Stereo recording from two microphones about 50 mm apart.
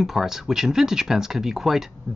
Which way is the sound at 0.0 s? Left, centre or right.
Centre.